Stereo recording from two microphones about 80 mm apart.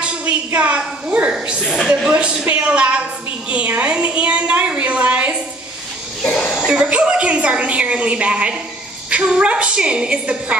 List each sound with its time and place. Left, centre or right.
0.0 s a woman's voice: centre
6.3 s a sound: centre
6.6 s a woman's voice: centre